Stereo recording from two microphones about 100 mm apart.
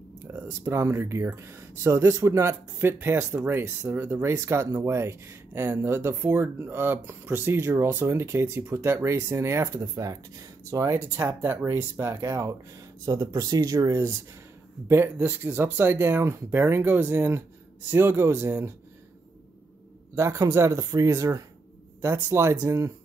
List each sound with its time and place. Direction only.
0.2 s speech: 20° right (ahead or behind)
14.9 s speech: 25° right (ahead or behind)
20.2 s speech: 30° right (ahead or behind)